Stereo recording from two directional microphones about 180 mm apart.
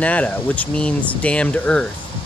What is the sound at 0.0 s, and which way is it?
Speech, 10° left (ahead or behind).